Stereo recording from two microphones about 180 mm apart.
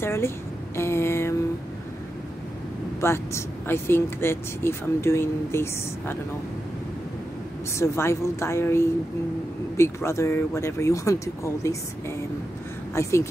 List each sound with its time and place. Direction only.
0.0 s speech: 15° left (ahead or behind)
0.7 s a sound: 15° left (ahead or behind)
3.0 s speech: 15° left (ahead or behind)
7.8 s speech: 15° left (ahead or behind)
12.9 s speech: 15° left (ahead or behind)